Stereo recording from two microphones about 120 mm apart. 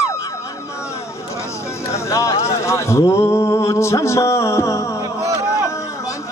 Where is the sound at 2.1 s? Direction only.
25° left (ahead or behind).